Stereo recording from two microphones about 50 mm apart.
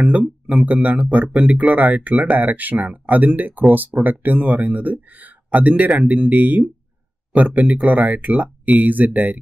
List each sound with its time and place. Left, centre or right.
0.6 s speech: right